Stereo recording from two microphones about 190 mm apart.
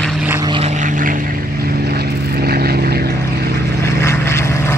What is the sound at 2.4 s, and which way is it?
Vehicle, 55° right (ahead or behind).